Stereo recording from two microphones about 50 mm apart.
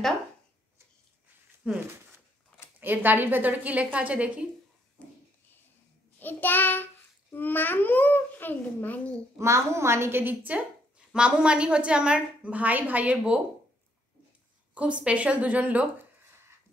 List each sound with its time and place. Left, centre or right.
1.6 s a woman's voice: right
2.8 s a woman's voice: right
5.0 s a sound: left
6.1 s child singing: left
7.3 s a child's voice: left
9.4 s a woman's voice: right
10.5 s a woman's voice: right
12.5 s a woman's voice: right
14.7 s a woman's voice: right